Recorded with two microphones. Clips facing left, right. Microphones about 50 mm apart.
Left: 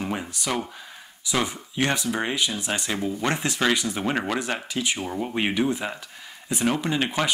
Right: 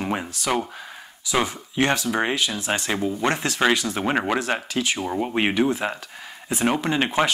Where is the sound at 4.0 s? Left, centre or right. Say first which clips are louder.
Right 3 dB; centre.